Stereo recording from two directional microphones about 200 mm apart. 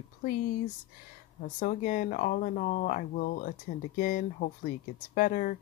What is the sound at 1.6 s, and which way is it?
Speech, 40° left (ahead or behind).